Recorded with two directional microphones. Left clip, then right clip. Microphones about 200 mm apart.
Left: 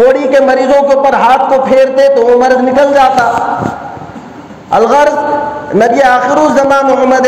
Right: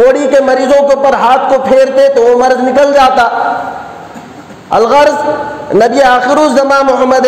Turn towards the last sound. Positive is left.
turn(degrees=-40)  # may be behind; listen again after turning